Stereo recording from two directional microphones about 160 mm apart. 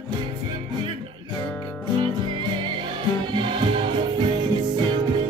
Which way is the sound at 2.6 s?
30° right (ahead or behind).